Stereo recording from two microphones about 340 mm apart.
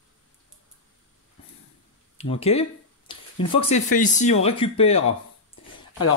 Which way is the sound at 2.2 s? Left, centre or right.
Centre.